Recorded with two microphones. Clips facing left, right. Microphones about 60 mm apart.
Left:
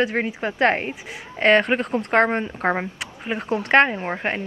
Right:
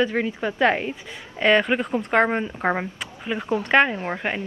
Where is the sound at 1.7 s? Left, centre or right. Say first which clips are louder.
Left 1 dB; centre.